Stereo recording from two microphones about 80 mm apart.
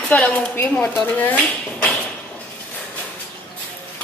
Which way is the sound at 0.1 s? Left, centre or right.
Centre.